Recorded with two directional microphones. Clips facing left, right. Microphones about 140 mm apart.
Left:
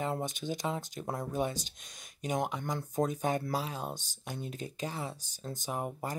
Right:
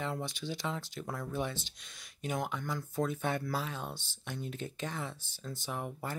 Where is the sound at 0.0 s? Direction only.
45° left (ahead or behind).